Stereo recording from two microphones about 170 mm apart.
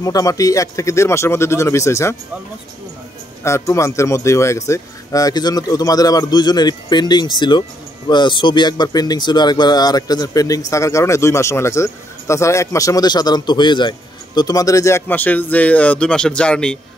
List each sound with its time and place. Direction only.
0.0 s speech: 20° left (ahead or behind)
3.4 s speech: 15° left (ahead or behind)